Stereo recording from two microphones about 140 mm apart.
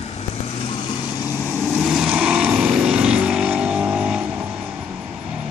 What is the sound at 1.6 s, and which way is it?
Vehicle, centre (ahead or behind).